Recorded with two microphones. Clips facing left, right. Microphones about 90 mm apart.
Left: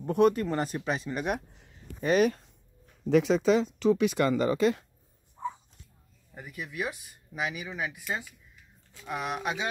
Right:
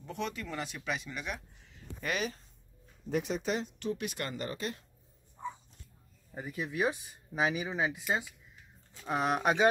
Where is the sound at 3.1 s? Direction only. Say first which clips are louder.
Left 10 dB; 90° left.